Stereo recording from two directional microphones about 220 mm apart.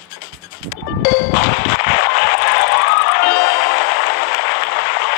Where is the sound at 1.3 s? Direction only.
45° left (ahead or behind).